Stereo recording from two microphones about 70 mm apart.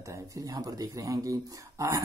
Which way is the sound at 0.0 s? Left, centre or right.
Right.